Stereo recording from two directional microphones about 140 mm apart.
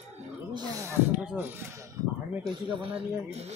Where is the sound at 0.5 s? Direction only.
25° right (ahead or behind).